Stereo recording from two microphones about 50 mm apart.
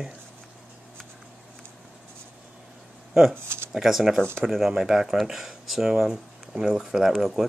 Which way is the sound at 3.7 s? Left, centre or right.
Centre.